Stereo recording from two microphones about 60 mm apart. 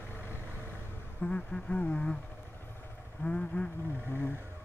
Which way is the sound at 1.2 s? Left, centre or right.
Centre.